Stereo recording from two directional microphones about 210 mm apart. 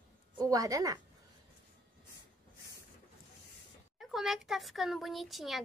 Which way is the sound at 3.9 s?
Centre (ahead or behind).